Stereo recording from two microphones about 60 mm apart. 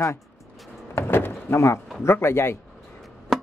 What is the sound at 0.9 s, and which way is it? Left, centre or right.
Door, left.